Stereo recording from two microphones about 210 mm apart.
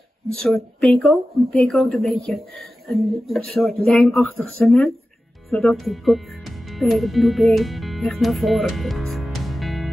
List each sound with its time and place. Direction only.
0.4 s speech: centre (ahead or behind)